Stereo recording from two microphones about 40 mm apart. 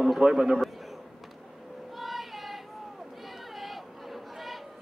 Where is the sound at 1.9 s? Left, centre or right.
Centre.